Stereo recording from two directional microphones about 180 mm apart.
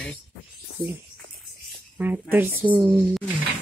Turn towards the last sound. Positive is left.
turn(degrees=-10)  # may be behind; listen again after turning